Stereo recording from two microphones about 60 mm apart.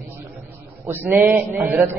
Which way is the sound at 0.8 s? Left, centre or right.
Right.